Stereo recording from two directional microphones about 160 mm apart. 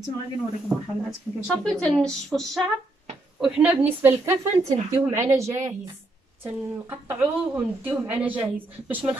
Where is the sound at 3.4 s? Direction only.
10° right (ahead or behind).